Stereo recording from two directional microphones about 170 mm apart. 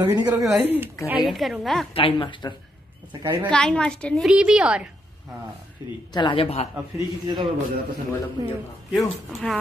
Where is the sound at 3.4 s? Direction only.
5° left (ahead or behind).